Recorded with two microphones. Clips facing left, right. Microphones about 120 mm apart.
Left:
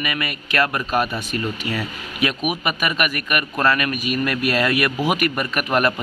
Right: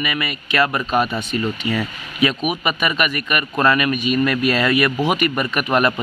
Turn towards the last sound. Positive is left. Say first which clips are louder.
# right 2 dB
turn(degrees=0)  # may be behind; listen again after turning